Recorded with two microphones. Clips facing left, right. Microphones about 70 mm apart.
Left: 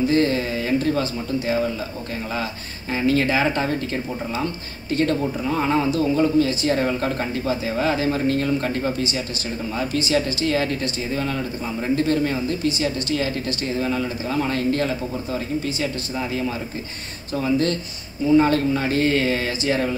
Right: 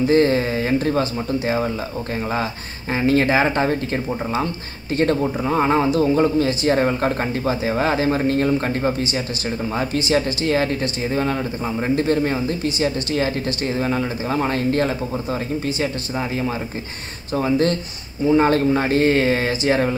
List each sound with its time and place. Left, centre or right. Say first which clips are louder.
0.1 s speech: right 4 dB; right
2.9 s speech: right 3 dB; right
10.0 s speech: right 2 dB; right